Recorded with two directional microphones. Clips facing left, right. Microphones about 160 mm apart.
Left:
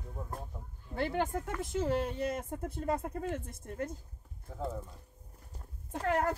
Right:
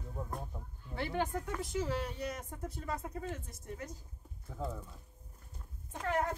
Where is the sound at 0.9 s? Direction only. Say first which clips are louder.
Left 3 dB; 45° left (ahead or behind).